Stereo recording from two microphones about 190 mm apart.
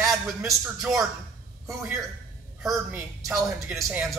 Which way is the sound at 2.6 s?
5° right (ahead or behind).